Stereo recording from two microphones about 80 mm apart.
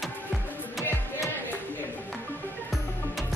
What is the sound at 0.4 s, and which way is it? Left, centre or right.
Music, left.